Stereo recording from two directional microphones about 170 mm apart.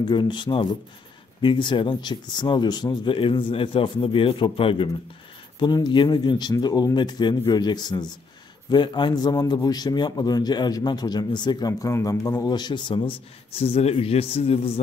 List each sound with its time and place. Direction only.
0.1 s a man's voice: 25° left (ahead or behind)